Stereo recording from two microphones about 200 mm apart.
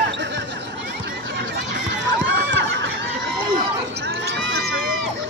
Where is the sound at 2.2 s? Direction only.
65° right (ahead or behind).